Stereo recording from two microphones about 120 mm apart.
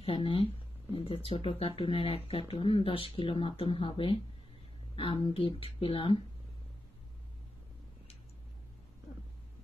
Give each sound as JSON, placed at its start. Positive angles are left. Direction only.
{"t": 0.0, "sound": "speech", "side_deg": 50}